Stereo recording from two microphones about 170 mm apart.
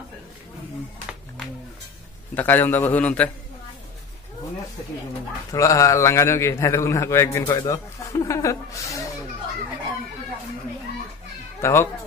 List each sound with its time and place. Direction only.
2.3 s a man's voice: 10° left (ahead or behind)
5.5 s a man's voice: 20° left (ahead or behind)
7.6 s a sound: 15° left (ahead or behind)
11.6 s a man's voice: 15° left (ahead or behind)